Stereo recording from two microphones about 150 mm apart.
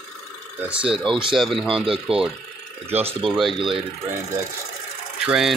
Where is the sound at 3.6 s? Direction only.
35° right (ahead or behind).